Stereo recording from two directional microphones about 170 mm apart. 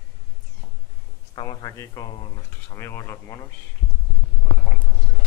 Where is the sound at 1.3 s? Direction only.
30° left (ahead or behind).